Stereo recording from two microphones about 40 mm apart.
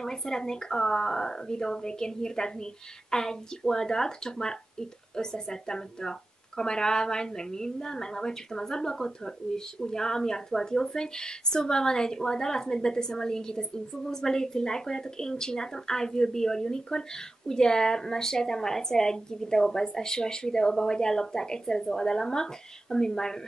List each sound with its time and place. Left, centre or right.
0.0 s speech: centre